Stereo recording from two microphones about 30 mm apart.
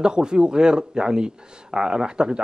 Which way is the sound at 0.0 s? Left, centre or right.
Right.